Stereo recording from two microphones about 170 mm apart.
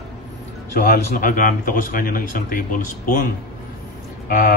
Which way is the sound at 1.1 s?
55° left (ahead or behind).